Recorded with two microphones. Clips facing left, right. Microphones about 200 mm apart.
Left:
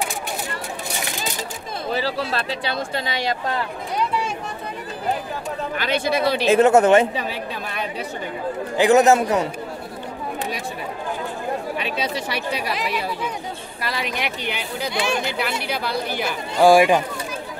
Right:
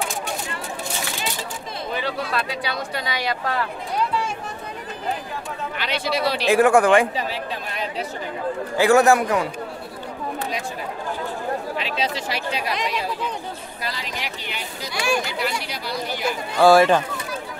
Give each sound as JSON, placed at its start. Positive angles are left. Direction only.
{"t": 1.9, "sound": "speech", "side_deg": 30}
{"t": 5.8, "sound": "speech", "side_deg": 50}
{"t": 6.4, "sound": "speech", "side_deg": 20}
{"t": 8.7, "sound": "speech", "side_deg": 20}
{"t": 12.6, "sound": "speech", "side_deg": 5}
{"t": 13.8, "sound": "speech", "side_deg": 60}
{"t": 15.0, "sound": "speech", "side_deg": 25}
{"t": 15.6, "sound": "speech", "side_deg": 60}
{"t": 16.5, "sound": "speech", "side_deg": 15}